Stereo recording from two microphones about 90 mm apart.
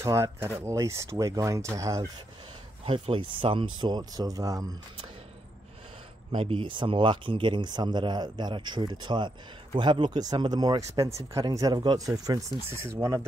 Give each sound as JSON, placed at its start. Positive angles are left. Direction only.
{"t": 0.0, "sound": "speech", "side_deg": -30}
{"t": 2.8, "sound": "speech", "side_deg": -85}
{"t": 6.3, "sound": "speech", "side_deg": -75}